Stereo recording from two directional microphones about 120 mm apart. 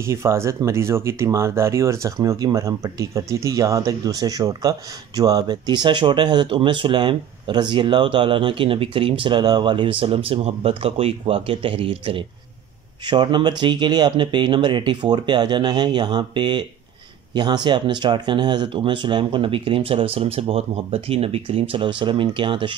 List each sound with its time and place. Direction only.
0.0 s speech: 25° right (ahead or behind); by 12.3 s 50° right (ahead or behind)
13.0 s speech: 40° right (ahead or behind)